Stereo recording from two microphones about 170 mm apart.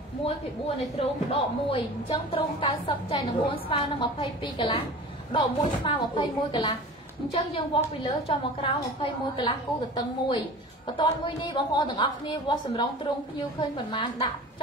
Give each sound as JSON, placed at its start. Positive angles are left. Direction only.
{"t": 0.9, "sound": "a woman's voice", "side_deg": 35}